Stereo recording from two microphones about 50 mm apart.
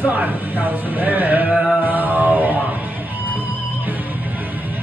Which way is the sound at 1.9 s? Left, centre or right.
Right.